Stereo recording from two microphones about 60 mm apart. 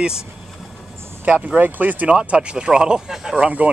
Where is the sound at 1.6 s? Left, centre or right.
Right.